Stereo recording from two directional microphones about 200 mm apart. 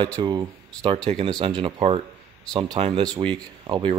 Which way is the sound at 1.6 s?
25° right (ahead or behind).